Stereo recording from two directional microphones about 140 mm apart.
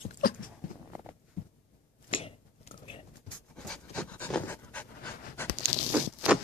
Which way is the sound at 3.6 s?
5° left (ahead or behind).